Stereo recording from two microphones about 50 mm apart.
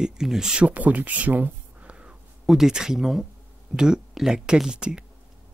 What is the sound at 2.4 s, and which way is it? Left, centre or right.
Speech, centre.